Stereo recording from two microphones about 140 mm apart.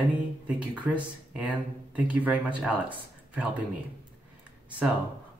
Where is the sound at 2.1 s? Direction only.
10° right (ahead or behind).